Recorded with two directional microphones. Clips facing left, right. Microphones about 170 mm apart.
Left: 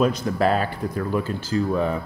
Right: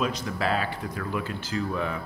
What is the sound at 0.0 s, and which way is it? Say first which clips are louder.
Speech: left 8 dB; 45° left (ahead or behind).